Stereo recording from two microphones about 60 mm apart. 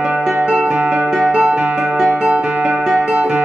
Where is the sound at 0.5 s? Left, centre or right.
Centre.